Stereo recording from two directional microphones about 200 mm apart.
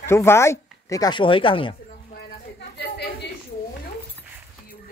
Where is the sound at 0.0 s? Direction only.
10° left (ahead or behind).